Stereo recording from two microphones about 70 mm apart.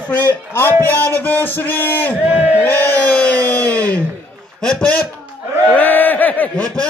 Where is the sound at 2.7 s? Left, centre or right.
Left.